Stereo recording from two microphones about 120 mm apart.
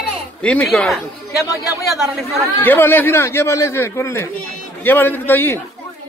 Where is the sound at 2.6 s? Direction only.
15° left (ahead or behind).